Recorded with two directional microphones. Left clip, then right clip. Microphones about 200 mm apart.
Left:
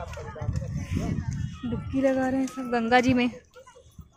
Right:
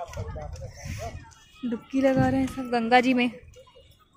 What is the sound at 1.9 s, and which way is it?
Speech, 10° right (ahead or behind).